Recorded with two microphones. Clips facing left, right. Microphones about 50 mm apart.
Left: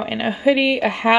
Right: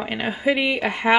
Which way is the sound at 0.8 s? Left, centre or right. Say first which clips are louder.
Left 4 dB; centre.